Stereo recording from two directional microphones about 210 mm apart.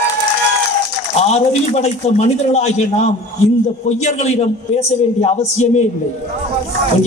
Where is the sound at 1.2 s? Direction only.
30° left (ahead or behind).